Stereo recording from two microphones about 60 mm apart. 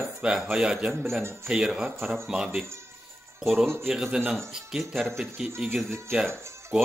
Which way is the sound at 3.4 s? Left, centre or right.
Centre.